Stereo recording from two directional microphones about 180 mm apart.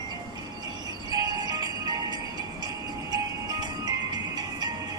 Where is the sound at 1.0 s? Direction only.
20° right (ahead or behind).